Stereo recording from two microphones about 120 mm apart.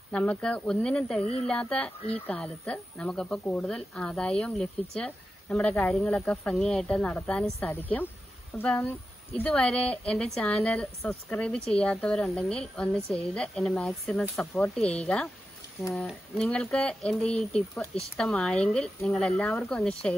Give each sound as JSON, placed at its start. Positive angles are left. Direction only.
{"t": 0.1, "sound": "speech", "side_deg": 10}
{"t": 7.7, "sound": "speech", "side_deg": 15}
{"t": 16.3, "sound": "speech", "side_deg": 5}